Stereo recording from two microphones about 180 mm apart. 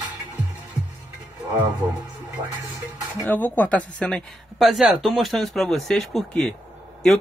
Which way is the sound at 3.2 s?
10° left (ahead or behind).